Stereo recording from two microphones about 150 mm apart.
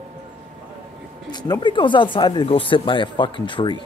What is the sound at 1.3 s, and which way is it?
Speech, 30° left (ahead or behind).